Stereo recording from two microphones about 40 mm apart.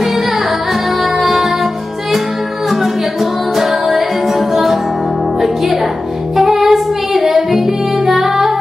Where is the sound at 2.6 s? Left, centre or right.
Centre.